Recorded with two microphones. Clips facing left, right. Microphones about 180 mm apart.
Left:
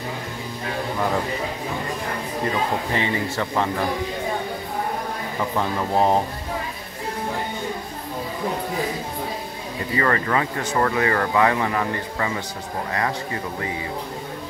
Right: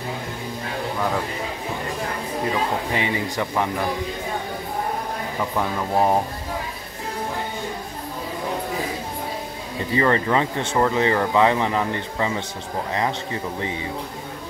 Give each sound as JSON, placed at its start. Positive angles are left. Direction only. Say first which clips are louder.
{"t": 2.9, "sound": "speech", "louder": "even", "side_deg": -15}
{"t": 5.6, "sound": "speech", "louder": "even", "side_deg": -10}
{"t": 9.9, "sound": "speech", "louder": "right 2 dB", "side_deg": -20}